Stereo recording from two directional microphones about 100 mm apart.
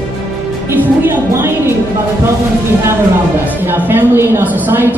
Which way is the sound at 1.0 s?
25° right (ahead or behind).